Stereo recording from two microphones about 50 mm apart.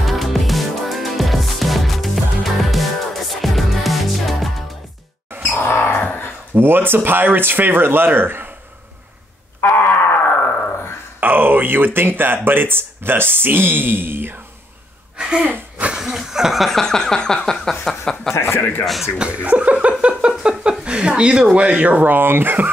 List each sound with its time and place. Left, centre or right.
0.0 s music: centre
5.5 s a sound: left
6.5 s speech: right
9.6 s a sound: left
11.1 s speech: right
15.1 s a sound: centre
16.0 s speech: centre
18.3 s a man's voice: left
19.1 s speech: right